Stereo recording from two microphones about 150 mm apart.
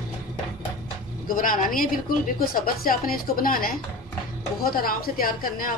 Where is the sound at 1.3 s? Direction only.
65° left (ahead or behind).